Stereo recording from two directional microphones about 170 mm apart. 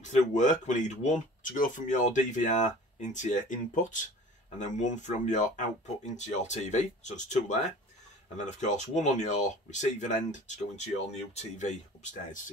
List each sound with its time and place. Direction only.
0.0 s speech: 45° left (ahead or behind)